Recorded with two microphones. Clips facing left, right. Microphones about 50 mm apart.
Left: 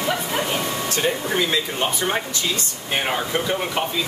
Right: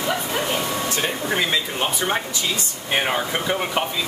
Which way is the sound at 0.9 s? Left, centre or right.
Centre.